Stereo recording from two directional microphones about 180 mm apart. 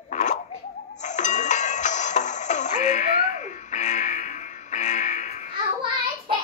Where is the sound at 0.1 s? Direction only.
40° left (ahead or behind).